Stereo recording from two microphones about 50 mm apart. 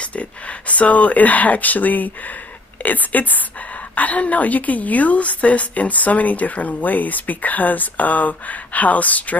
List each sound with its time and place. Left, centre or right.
0.0 s a woman's voice: left